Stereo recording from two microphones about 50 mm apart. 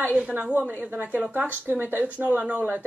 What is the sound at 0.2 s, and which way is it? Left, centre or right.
A woman's voice, right.